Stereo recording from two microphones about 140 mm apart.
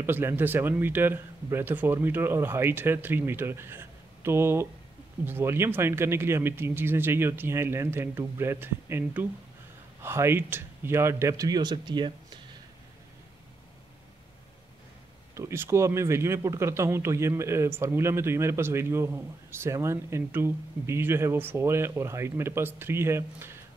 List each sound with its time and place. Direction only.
0.0 s a man's voice: 15° right (ahead or behind); by 12.1 s 30° right (ahead or behind)
15.3 s speech: 20° right (ahead or behind)